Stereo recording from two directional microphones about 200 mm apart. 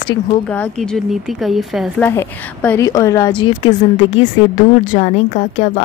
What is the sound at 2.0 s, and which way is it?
A woman's voice, 10° left (ahead or behind).